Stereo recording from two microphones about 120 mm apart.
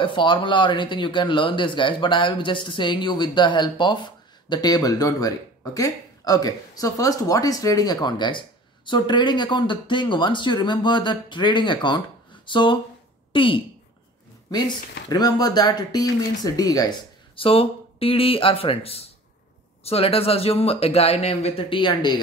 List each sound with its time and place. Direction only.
0.0 s a woman's voice: 45° left (ahead or behind)
14.5 s speech: 35° left (ahead or behind)
17.4 s speech: 50° left (ahead or behind)